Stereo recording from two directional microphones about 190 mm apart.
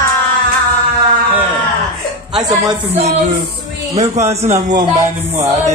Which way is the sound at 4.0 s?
40° right (ahead or behind).